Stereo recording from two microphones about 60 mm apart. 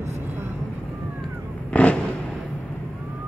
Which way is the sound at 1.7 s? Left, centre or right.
Left.